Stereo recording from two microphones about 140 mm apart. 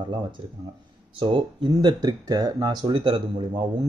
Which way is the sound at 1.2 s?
35° right (ahead or behind).